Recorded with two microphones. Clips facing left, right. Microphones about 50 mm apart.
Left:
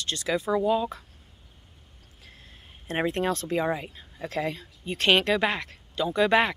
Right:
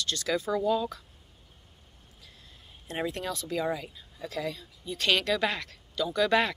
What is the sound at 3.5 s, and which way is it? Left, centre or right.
Speech, left.